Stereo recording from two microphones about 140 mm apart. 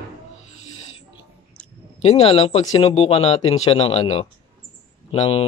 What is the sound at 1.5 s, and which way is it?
Speech, 45° left (ahead or behind).